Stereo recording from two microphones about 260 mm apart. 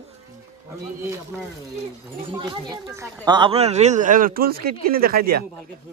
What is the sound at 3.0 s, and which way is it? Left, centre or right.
Speech, centre.